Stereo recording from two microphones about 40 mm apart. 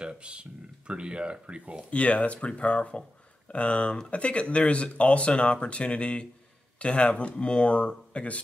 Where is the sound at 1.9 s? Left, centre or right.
Left.